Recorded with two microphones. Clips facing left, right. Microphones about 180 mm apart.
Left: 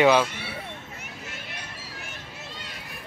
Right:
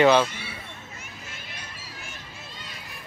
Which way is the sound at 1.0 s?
65° left (ahead or behind).